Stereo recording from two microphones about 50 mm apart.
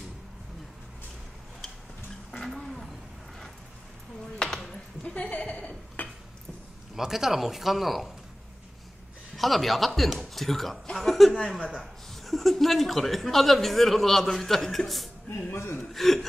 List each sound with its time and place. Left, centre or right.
2.3 s a sound: centre
4.6 s a sound: left
6.0 s dishes: left
7.0 s speech: centre
9.4 s speech: centre
15.5 s speech: left
15.9 s speech: centre